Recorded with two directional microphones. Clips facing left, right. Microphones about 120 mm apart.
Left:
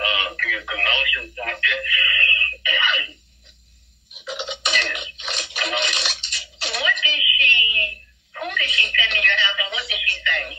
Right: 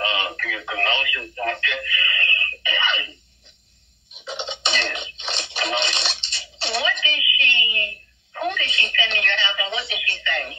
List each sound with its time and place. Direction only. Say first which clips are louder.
0.0 s radio: even; 30° right (ahead or behind)
4.1 s music: left 1 dB; 25° right (ahead or behind)